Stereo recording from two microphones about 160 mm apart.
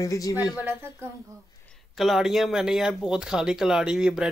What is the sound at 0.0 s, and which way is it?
Speech, 20° left (ahead or behind).